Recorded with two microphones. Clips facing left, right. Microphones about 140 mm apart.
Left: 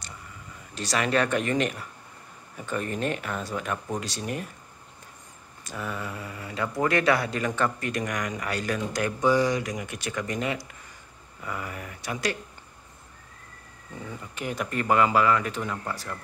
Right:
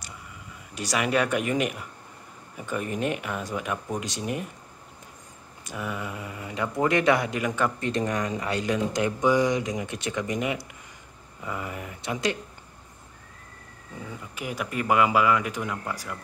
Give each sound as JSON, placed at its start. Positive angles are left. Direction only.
{"t": 0.7, "sound": "speech", "side_deg": -10}
{"t": 5.6, "sound": "speech", "side_deg": -15}
{"t": 7.8, "sound": "speech", "side_deg": -25}
{"t": 14.3, "sound": "speech", "side_deg": -5}